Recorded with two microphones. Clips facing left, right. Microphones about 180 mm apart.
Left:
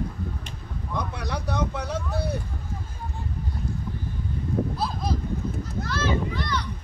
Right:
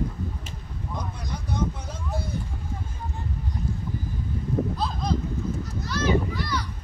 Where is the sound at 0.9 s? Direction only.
70° left (ahead or behind).